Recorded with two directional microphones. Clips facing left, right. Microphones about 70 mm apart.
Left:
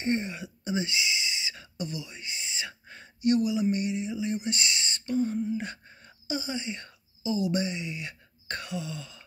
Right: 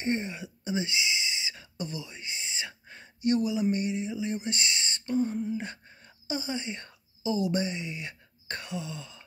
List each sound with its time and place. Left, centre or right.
0.0 s speech: centre
1.8 s whispering: right
3.2 s speech: right
3.7 s a sound: right